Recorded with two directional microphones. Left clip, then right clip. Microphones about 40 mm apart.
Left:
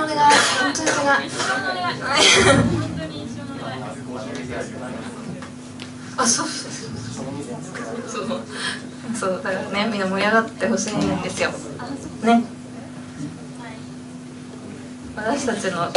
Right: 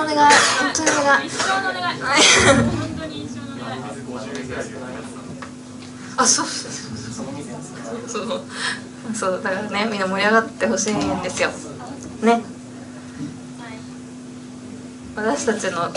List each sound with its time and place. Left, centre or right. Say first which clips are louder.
0.0 s a sound: right 2 dB; right
2.0 s a woman's voice: right 1 dB; right
6.1 s a woman's voice: right 3 dB; right
8.1 s a woman's voice: right 3 dB; right
15.1 s a woman's voice: right 2 dB; right